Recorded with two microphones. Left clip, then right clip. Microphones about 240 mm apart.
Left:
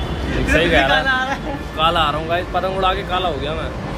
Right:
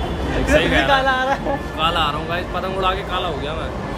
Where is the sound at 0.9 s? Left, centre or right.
Right.